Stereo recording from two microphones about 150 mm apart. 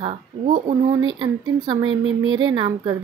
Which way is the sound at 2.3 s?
30° right (ahead or behind).